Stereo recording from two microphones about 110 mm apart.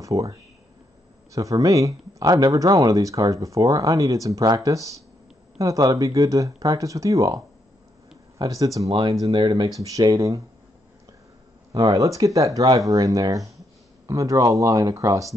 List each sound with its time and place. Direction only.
0.0 s speech: 30° right (ahead or behind)
9.3 s speech: 50° right (ahead or behind)
9.8 s speech: 30° right (ahead or behind)
11.7 s speech: 35° right (ahead or behind)